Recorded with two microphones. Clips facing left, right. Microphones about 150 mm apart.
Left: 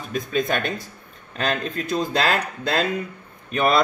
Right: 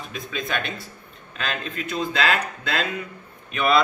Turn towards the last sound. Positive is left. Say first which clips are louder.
# left 1 dB
turn(degrees=40)  # may be behind; listen again after turning